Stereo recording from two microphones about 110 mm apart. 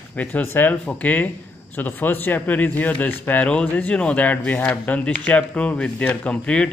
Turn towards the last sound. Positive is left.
turn(degrees=10)  # may be behind; listen again after turning